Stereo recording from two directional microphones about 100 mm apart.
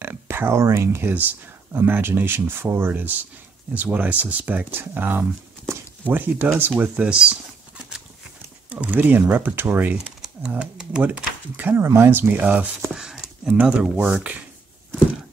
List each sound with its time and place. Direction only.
0.0 s speech: 20° right (ahead or behind)